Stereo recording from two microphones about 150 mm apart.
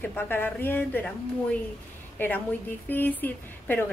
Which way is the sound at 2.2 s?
10° left (ahead or behind).